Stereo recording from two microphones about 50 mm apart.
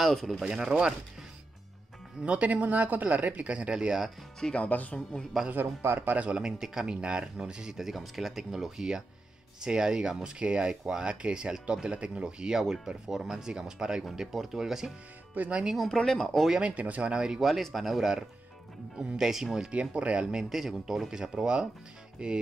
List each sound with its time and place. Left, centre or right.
0.0 s speech: centre
0.4 s speech: centre
2.2 s speech: right
4.6 s speech: left
5.5 s speech: right
6.0 s speech: right
6.3 s speech: centre
15.3 s speech: right
15.9 s speech: centre
16.6 s speech: right
17.4 s speech: centre
19.7 s speech: right
20.4 s speech: centre